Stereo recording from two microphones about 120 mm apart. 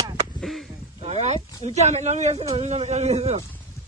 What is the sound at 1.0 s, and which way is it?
A man's voice, 65° right (ahead or behind).